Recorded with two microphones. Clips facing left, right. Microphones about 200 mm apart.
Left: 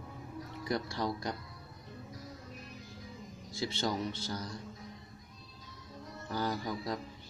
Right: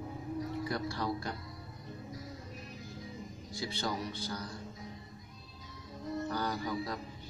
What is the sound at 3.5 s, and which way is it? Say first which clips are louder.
A man's voice: left 3 dB; 25° left (ahead or behind).